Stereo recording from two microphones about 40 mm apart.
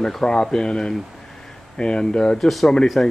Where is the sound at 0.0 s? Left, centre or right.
Centre.